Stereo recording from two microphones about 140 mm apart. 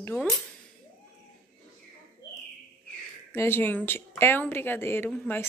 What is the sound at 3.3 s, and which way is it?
Speech, 15° left (ahead or behind).